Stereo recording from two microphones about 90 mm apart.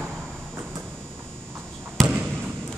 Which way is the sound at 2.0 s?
5° left (ahead or behind).